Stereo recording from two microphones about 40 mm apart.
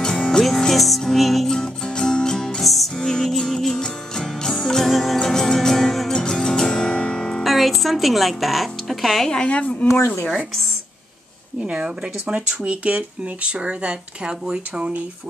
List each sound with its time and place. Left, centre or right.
0.0 s music: centre
1.5 s music: centre
2.6 s music: centre
6.1 s music: centre
7.4 s speech: centre
9.3 s a woman's voice: left
11.6 s speech: right